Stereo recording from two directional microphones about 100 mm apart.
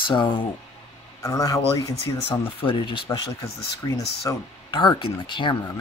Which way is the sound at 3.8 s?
35° left (ahead or behind).